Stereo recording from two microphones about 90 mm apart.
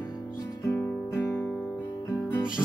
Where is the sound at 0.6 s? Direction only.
30° left (ahead or behind).